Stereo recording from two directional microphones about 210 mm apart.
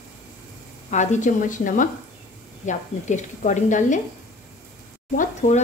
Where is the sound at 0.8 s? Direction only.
35° left (ahead or behind).